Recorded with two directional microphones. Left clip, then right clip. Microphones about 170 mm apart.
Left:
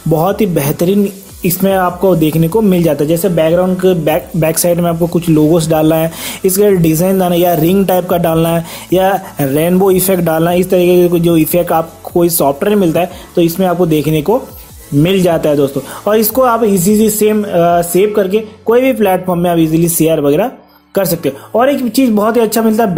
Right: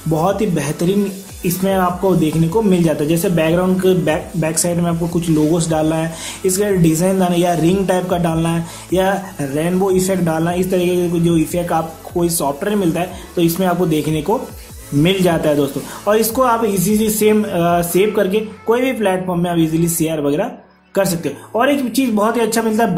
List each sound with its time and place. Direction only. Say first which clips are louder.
0.1 s a man's voice: left 5 dB; 45° left (ahead or behind)